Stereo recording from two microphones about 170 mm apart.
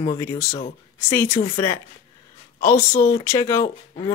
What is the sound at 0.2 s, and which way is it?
Speech, 20° left (ahead or behind).